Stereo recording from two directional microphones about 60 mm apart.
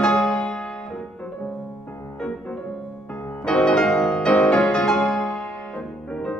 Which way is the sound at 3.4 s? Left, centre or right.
Centre.